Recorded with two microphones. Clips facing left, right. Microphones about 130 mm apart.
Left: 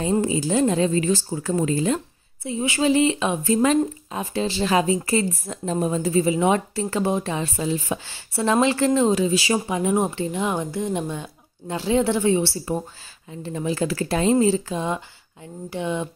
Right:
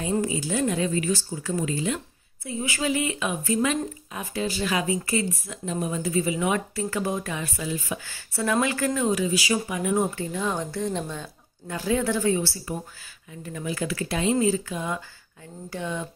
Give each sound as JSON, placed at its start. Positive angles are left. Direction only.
{"t": 0.0, "sound": "speech", "side_deg": 30}
{"t": 2.4, "sound": "speech", "side_deg": 25}
{"t": 11.7, "sound": "speech", "side_deg": 25}